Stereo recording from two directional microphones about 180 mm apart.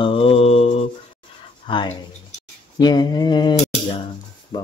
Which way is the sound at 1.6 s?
30° left (ahead or behind).